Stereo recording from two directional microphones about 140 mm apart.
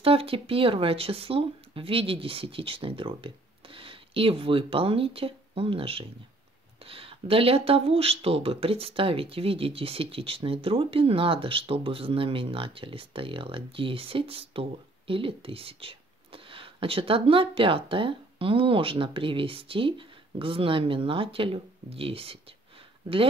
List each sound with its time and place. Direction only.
0.0 s speech: 45° right (ahead or behind)